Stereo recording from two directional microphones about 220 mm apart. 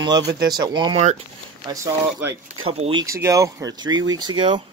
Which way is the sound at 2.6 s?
25° right (ahead or behind).